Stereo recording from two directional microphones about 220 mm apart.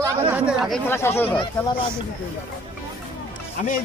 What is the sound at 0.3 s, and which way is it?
Speech, 5° right (ahead or behind).